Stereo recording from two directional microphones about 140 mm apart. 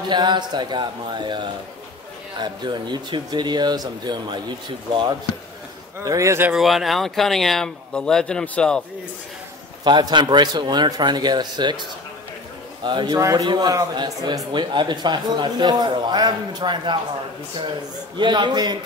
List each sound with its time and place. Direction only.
0.1 s a man's voice: 30° right (ahead or behind)
5.9 s speech: 20° right (ahead or behind)
6.5 s speech: centre (ahead or behind)
9.8 s a man's voice: 30° right (ahead or behind)
12.8 s a man's voice: 30° right (ahead or behind)
18.1 s a man's voice: 30° right (ahead or behind)